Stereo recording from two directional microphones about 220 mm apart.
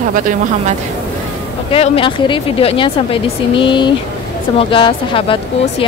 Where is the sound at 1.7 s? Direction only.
25° left (ahead or behind).